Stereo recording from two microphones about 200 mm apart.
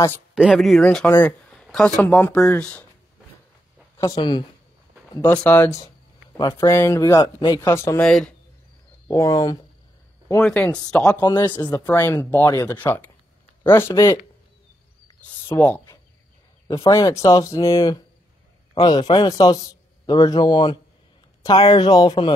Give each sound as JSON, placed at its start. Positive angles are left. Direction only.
{"t": 0.3, "sound": "speech", "side_deg": 0}
{"t": 4.1, "sound": "a man's voice", "side_deg": 20}
{"t": 5.1, "sound": "speech", "side_deg": 10}
{"t": 10.4, "sound": "speech", "side_deg": 5}
{"t": 11.1, "sound": "a man's voice", "side_deg": 20}
{"t": 15.5, "sound": "a man's voice", "side_deg": 10}